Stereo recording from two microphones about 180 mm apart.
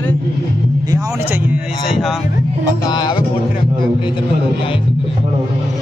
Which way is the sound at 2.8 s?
25° left (ahead or behind).